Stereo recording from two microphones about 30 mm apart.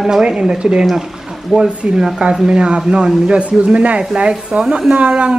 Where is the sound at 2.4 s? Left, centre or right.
Right.